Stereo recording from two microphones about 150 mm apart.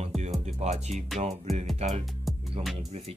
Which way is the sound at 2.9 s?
45° right (ahead or behind).